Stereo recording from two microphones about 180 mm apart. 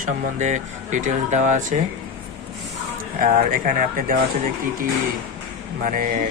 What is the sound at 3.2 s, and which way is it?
Speech, 50° right (ahead or behind).